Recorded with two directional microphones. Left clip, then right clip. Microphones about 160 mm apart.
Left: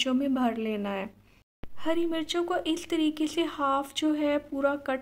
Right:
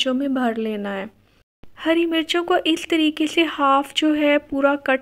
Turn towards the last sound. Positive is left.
turn(degrees=-25)  # may be behind; listen again after turning